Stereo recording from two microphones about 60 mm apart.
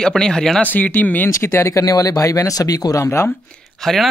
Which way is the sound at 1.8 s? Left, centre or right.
Left.